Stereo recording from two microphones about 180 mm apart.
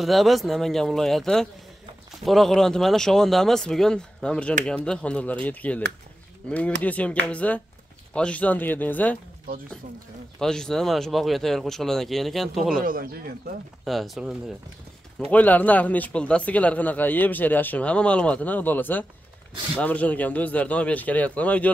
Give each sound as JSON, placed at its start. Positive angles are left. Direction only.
{"t": 0.0, "sound": "speech", "side_deg": 0}
{"t": 10.4, "sound": "speech", "side_deg": 5}
{"t": 12.8, "sound": "speech", "side_deg": -50}
{"t": 13.8, "sound": "speech", "side_deg": 0}